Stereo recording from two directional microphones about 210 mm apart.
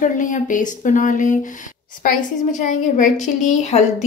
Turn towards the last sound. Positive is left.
turn(degrees=35)  # may be behind; listen again after turning